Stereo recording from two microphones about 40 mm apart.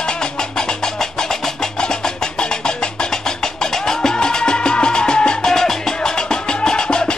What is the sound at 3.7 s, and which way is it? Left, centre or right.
Music, centre.